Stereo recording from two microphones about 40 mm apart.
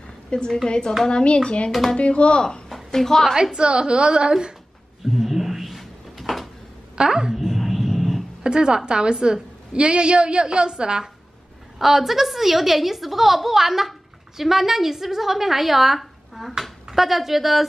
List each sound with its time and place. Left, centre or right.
0.3 s a woman's voice: left
1.7 s a woman's voice: centre
2.0 s a woman's voice: left
2.7 s a woman's voice: centre
3.5 s a woman's voice: right
5.0 s a sound: centre
7.0 s speech: centre
7.3 s a sound: centre
8.5 s a woman's voice: right
11.8 s a woman's voice: centre